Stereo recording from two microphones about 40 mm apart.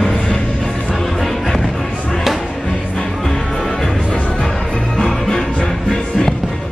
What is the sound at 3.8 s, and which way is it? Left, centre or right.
Music, centre.